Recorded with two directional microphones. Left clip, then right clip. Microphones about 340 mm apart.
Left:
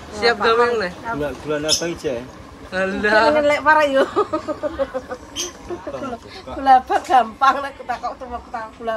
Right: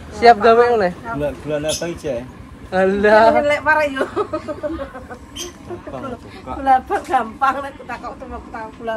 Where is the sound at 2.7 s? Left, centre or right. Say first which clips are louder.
Right 4 dB; centre.